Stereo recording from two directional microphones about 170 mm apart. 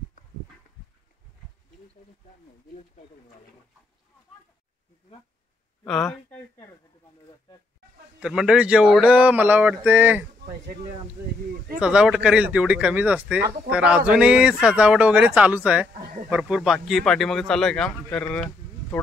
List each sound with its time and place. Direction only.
5.9 s speech: centre (ahead or behind)
8.2 s speech: 5° right (ahead or behind)
11.8 s speech: 5° right (ahead or behind)
16.0 s speech: 60° right (ahead or behind)
16.3 s speech: 5° right (ahead or behind)